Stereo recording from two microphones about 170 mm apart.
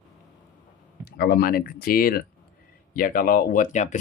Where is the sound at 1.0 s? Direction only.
70° left (ahead or behind).